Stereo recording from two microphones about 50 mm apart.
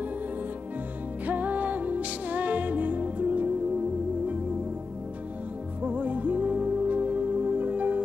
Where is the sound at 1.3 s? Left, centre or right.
Right.